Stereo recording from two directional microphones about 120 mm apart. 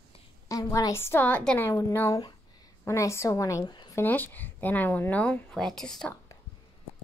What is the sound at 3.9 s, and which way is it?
A woman's voice, 15° left (ahead or behind).